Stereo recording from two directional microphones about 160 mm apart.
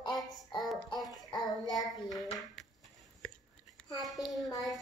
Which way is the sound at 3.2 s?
5° left (ahead or behind).